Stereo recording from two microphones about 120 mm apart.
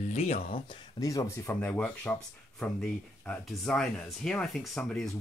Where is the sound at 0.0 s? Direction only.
80° left.